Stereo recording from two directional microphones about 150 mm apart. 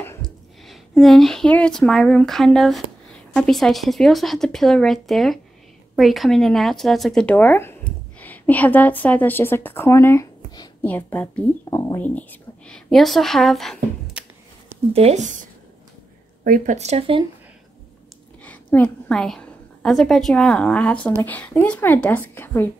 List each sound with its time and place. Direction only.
0.2 s a woman's voice: centre (ahead or behind)
14.9 s speech: 45° right (ahead or behind)
16.4 s speech: 65° right (ahead or behind)
16.7 s speech: 45° right (ahead or behind)
18.4 s a woman's voice: 10° left (ahead or behind)